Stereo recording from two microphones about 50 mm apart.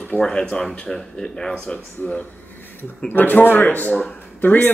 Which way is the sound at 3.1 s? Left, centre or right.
Left.